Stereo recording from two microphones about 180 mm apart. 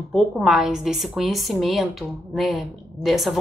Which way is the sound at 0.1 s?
Centre (ahead or behind).